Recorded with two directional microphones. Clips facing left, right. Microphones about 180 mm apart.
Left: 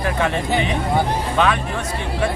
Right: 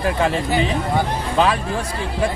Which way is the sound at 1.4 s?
30° right (ahead or behind).